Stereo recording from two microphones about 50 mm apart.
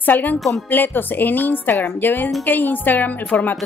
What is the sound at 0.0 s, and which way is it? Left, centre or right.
A woman's voice, left.